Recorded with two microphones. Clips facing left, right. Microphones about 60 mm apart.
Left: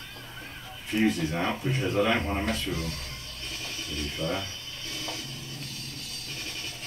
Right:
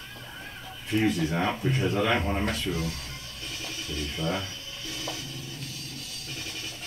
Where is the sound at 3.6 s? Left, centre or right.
Left.